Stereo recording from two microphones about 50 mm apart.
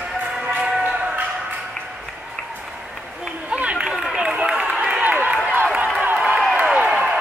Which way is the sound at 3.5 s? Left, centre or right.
Right.